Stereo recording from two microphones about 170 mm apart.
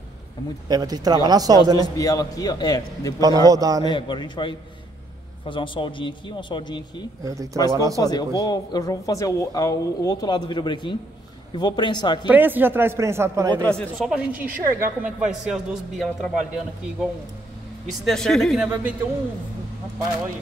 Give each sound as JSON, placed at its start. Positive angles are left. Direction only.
{"t": 0.7, "sound": "speech", "side_deg": -25}
{"t": 2.0, "sound": "speech", "side_deg": 20}
{"t": 3.2, "sound": "speech", "side_deg": -20}
{"t": 3.8, "sound": "speech", "side_deg": 25}
{"t": 7.2, "sound": "speech", "side_deg": -20}
{"t": 8.0, "sound": "speech", "side_deg": 20}
{"t": 12.3, "sound": "a man's voice", "side_deg": -10}
{"t": 13.7, "sound": "a woman's voice", "side_deg": 5}
{"t": 14.2, "sound": "a woman's voice", "side_deg": -10}